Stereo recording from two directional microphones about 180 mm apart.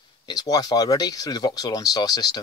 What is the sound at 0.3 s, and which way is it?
Speech, 20° left (ahead or behind).